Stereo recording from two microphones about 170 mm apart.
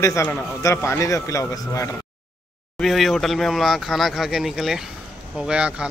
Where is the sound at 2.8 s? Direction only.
Centre (ahead or behind).